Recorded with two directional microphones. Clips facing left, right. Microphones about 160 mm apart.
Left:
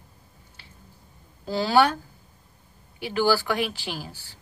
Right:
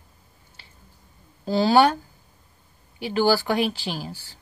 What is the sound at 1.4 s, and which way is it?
Speech, 25° right (ahead or behind).